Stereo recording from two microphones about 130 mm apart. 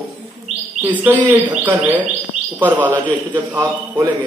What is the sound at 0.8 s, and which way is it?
Chirp, 15° right (ahead or behind).